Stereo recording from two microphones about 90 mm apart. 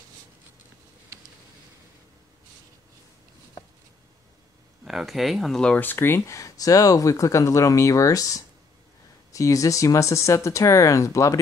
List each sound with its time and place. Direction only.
4.8 s speech: centre (ahead or behind)
5.8 s speech: 25° left (ahead or behind)